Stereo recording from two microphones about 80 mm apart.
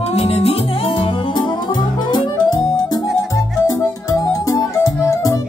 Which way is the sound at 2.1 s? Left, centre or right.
Left.